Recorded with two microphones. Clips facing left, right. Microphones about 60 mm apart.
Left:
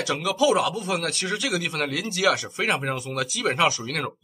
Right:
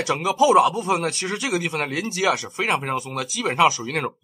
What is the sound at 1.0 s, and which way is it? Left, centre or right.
Speech, centre.